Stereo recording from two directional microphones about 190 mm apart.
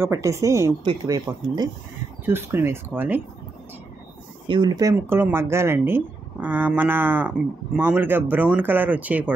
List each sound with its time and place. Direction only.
0.0 s speech: 15° right (ahead or behind)
4.5 s speech: 25° right (ahead or behind)